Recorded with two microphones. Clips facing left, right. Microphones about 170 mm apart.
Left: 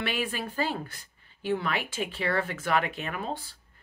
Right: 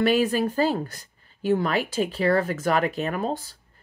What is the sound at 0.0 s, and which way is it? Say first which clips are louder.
Speech: right 11 dB; 40° right (ahead or behind).